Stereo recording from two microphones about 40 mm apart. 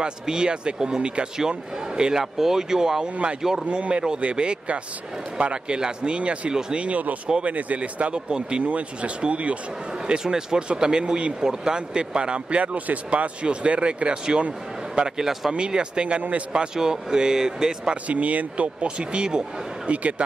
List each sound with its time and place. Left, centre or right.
0.0 s speech: right
3.7 s speech: right
8.3 s speech: right
10.0 s speech: centre; by 16.4 s right
16.5 s speech: centre
18.0 s speech: right
19.9 s speech: right